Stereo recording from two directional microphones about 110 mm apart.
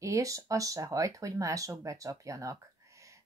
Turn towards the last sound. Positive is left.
turn(degrees=-30)  # may be behind; listen again after turning